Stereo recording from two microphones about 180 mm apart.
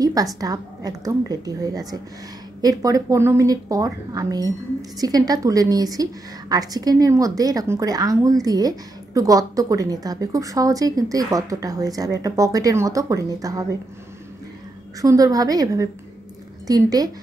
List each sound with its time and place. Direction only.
0.0 s a sound: 20° right (ahead or behind)
0.4 s a woman's voice: 20° right (ahead or behind)
15.0 s a woman's voice: 20° right (ahead or behind)